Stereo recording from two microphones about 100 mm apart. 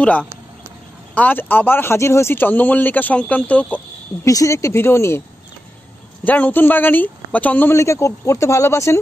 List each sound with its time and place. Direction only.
1.1 s speech: 15° left (ahead or behind)
4.2 s speech: 30° left (ahead or behind)
6.2 s speech: 15° left (ahead or behind)
7.7 s speech: 30° left (ahead or behind)